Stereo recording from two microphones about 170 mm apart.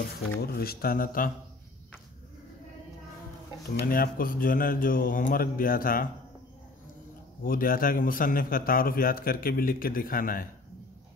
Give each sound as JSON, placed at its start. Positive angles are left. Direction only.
{"t": 0.4, "sound": "a man's voice", "side_deg": 65}
{"t": 3.7, "sound": "a man's voice", "side_deg": 60}
{"t": 7.4, "sound": "a man's voice", "side_deg": 55}